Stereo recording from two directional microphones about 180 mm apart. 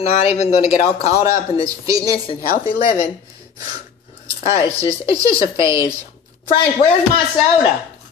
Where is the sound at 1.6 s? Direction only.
20° right (ahead or behind).